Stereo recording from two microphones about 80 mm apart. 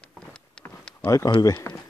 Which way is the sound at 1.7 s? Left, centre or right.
Left.